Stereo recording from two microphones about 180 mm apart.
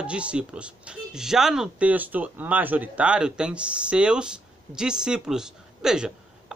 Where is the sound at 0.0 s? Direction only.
5° right (ahead or behind).